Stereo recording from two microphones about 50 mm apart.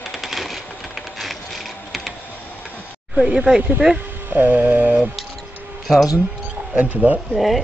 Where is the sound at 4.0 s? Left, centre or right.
Right.